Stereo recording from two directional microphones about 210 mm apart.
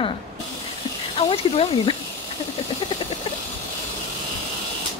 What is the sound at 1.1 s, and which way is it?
Speech, 25° left (ahead or behind).